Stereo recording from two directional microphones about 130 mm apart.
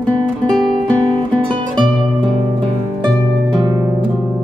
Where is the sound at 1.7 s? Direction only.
35° right (ahead or behind).